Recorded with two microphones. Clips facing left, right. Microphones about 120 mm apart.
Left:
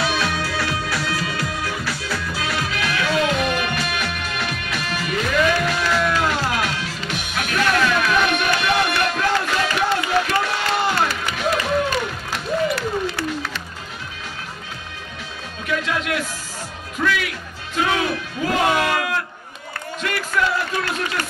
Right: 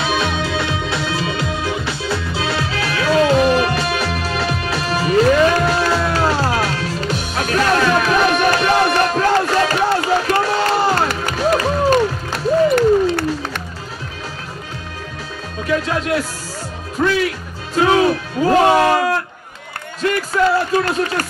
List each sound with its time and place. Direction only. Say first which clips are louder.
0.0 s music: right 3 dB; 25° right (ahead or behind); by 12.8 s 45° right (ahead or behind)
15.6 s music: right 5 dB; 35° right (ahead or behind)
20.0 s a sound: right 7 dB; 35° right (ahead or behind)